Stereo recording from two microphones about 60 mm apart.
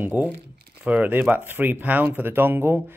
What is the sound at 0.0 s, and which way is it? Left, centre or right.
Speech, right.